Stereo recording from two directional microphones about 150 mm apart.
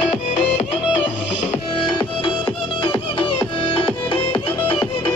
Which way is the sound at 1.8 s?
35° left (ahead or behind).